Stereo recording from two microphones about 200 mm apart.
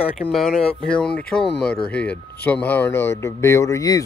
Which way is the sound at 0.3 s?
Centre (ahead or behind).